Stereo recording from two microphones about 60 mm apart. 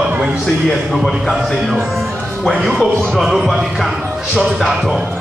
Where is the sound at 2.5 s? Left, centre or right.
Centre.